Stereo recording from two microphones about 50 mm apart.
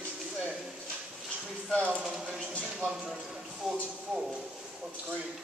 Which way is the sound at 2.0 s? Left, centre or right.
Centre.